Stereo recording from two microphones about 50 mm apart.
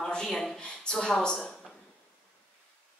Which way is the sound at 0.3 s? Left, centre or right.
Centre.